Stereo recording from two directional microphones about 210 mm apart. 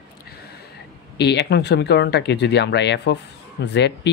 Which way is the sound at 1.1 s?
55° left (ahead or behind).